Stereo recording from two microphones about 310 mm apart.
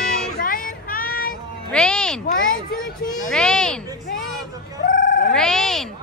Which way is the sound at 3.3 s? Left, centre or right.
Centre.